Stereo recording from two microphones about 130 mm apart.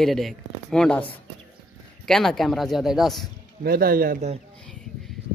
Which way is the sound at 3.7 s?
90° right.